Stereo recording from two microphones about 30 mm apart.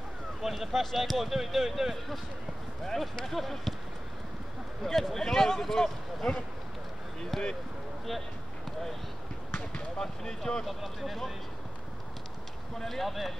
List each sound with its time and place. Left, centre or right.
0.4 s a sound: centre
0.7 s speech: centre
3.3 s speech: centre
4.8 s speech: centre
9.9 s speech: left
10.6 s speech: centre
12.8 s speech: centre